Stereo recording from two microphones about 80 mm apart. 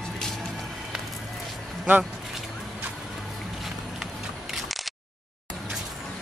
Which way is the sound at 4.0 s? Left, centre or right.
Centre.